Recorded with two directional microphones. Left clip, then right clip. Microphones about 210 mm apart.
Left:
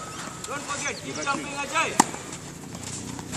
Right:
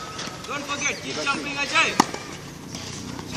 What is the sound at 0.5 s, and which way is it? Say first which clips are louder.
Speech: right 4 dB; 50° right (ahead or behind).